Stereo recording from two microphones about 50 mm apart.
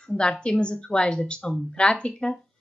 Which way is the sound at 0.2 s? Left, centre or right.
Centre.